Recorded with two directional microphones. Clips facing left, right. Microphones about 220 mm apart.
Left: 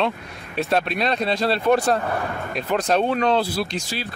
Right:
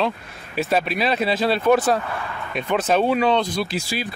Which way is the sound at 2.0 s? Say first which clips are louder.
Left 4 dB; 45° left (ahead or behind).